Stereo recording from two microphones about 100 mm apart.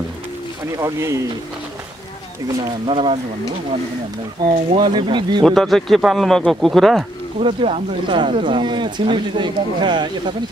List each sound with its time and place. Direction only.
0.7 s speech: 30° right (ahead or behind)
2.9 s speech: 60° right (ahead or behind)
4.4 s speech: 60° right (ahead or behind)
5.4 s a man's voice: centre (ahead or behind)
7.3 s speech: 80° right; by 10.3 s 50° right (ahead or behind)